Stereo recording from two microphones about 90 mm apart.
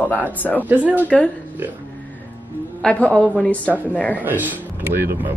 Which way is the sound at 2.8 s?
10° left (ahead or behind).